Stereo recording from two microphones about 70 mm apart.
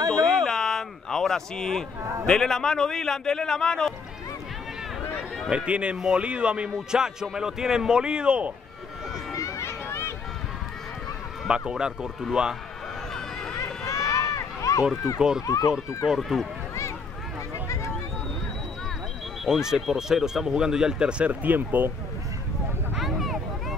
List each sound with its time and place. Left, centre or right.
0.4 s a sound: centre
2.2 s a man's voice: centre
5.7 s a man's voice: centre
9.3 s run: left
11.4 s a man's voice: centre
13.1 s run: centre
13.6 s run: left
15.1 s a man's voice: centre
15.4 s speech: left
16.1 s speech: centre
19.4 s a man's voice: centre; by 21.9 s right
22.9 s a sound: centre